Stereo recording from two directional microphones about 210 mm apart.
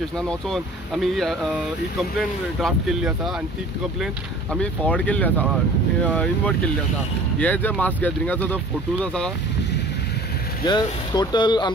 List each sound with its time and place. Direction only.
0.3 s speech: centre (ahead or behind)
2.6 s speech: centre (ahead or behind)
10.7 s speech: 20° left (ahead or behind)